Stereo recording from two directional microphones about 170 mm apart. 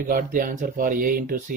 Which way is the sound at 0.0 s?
55° right (ahead or behind).